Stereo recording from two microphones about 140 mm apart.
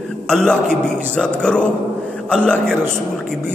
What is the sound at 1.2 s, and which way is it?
A man's voice, 5° left (ahead or behind).